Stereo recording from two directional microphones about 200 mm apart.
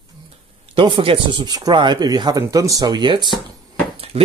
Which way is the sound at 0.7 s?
25° right (ahead or behind).